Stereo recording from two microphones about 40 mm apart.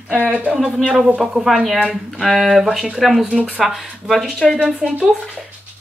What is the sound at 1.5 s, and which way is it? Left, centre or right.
Speech, centre.